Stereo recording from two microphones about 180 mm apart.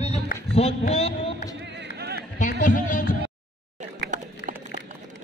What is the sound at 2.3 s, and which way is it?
Music, 45° left (ahead or behind).